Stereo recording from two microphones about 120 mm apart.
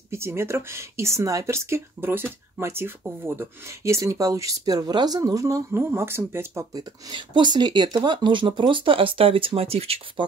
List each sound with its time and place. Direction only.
0.1 s speech: 20° right (ahead or behind)
6.7 s speech: 35° right (ahead or behind); by 10.2 s 55° right (ahead or behind)